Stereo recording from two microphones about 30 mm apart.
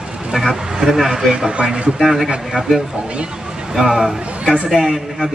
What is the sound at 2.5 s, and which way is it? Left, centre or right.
Speech, right.